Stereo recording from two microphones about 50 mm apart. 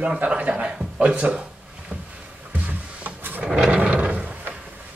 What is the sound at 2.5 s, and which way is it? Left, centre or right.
Drawer open or close, right.